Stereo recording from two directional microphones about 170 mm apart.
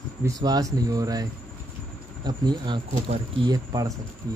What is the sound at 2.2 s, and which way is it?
Speech, 25° right (ahead or behind).